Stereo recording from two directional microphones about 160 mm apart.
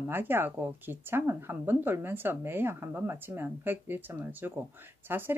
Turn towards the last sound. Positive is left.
turn(degrees=-15)  # may be behind; listen again after turning